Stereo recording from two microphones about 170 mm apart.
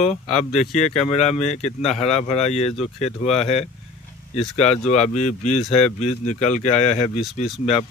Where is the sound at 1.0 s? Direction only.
40° left (ahead or behind).